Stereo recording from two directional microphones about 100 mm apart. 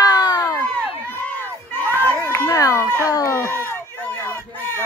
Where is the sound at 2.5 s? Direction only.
35° left (ahead or behind).